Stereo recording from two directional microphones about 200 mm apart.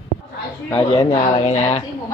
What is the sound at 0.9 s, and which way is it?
Speech, 30° left (ahead or behind).